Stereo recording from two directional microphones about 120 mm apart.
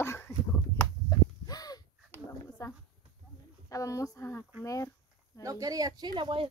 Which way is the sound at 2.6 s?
30° left (ahead or behind).